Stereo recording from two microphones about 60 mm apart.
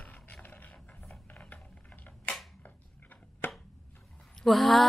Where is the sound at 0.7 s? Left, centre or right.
Centre.